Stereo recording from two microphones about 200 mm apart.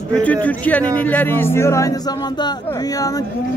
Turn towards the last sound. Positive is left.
turn(degrees=15)  # may be behind; listen again after turning